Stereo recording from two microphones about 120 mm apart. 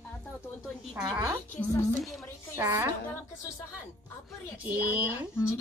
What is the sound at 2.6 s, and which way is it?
Music, 20° right (ahead or behind).